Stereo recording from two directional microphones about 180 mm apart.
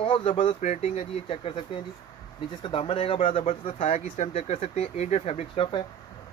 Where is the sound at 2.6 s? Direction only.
30° left (ahead or behind).